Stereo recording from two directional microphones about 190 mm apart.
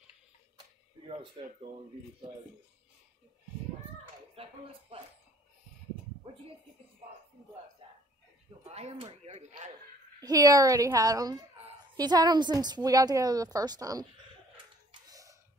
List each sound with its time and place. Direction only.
1.0 s a woman's voice: 30° right (ahead or behind)
4.4 s speech: 30° right (ahead or behind)
8.6 s speech: 35° right (ahead or behind)
10.2 s a woman's voice: 20° right (ahead or behind)
14.9 s a sound: 20° right (ahead or behind)